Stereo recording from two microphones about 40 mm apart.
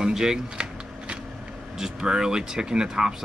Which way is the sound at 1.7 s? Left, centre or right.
Centre.